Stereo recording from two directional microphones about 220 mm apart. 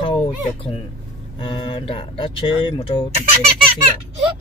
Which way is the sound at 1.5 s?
25° left (ahead or behind).